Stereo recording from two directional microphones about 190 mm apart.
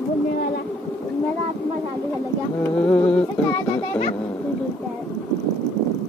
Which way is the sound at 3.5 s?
25° left (ahead or behind).